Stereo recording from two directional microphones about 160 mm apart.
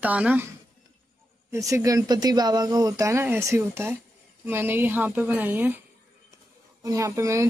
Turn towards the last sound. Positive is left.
turn(degrees=-20)  # may be behind; listen again after turning